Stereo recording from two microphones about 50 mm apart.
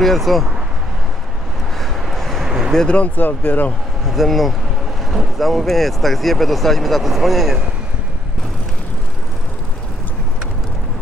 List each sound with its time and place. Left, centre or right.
0.0 s speech: centre
1.8 s vehicle: centre
2.4 s a sound: centre
3.2 s speech: left
4.0 s speech: centre